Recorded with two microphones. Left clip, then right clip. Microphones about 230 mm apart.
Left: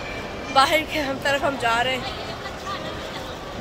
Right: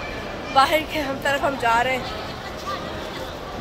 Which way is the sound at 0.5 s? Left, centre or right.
Centre.